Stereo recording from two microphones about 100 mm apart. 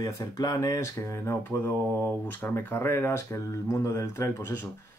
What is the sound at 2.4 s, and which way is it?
Speech, 25° left (ahead or behind).